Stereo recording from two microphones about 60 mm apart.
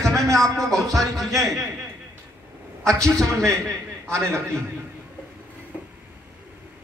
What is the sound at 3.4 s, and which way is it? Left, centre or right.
A man's voice, right.